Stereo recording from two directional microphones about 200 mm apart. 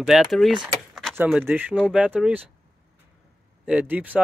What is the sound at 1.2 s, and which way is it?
Speech, 10° right (ahead or behind).